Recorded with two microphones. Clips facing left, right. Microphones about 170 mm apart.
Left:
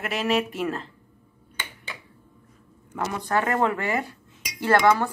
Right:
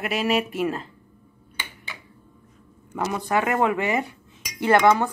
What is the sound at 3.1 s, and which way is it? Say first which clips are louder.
Speech: right 1 dB; 15° right (ahead or behind).